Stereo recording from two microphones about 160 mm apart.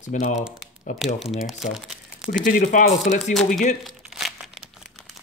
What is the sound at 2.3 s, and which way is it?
Speech, 60° left (ahead or behind).